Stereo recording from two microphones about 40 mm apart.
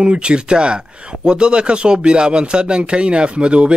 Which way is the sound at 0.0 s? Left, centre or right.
Right.